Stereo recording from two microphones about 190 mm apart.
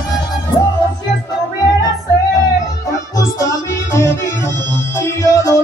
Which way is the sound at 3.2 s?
15° left (ahead or behind).